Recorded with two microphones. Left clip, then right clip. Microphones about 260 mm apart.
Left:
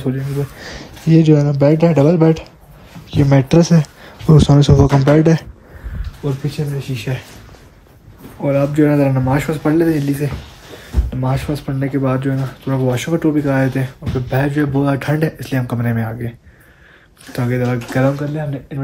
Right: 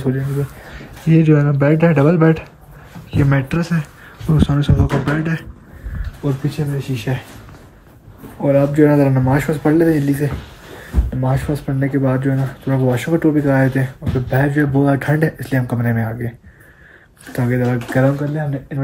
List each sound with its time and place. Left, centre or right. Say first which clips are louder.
0.7 s speech: left 2 dB; centre
6.2 s speech: right 1 dB; centre
8.4 s speech: right 2 dB; centre